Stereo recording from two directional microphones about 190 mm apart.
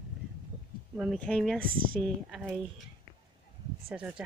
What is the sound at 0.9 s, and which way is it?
Speech, centre (ahead or behind).